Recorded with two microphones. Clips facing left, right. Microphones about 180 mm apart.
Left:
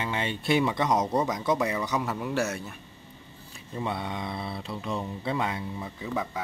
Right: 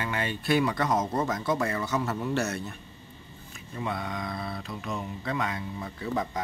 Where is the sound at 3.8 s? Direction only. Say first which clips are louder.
Left 1 dB; 25° left (ahead or behind).